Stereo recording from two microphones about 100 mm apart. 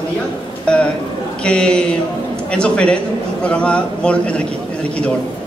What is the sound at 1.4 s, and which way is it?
A man's voice, 10° left (ahead or behind).